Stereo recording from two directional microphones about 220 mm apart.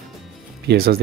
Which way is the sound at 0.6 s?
45° right (ahead or behind).